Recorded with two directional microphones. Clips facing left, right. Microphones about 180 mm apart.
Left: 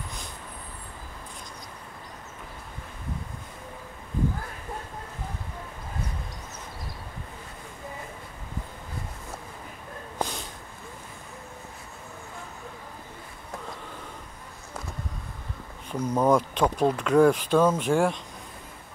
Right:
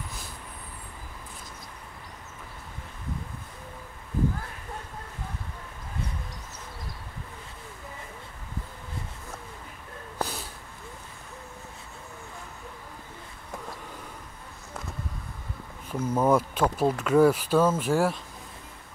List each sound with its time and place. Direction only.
10.1 s snort: 5° right (ahead or behind)
15.9 s speech: 5° right (ahead or behind)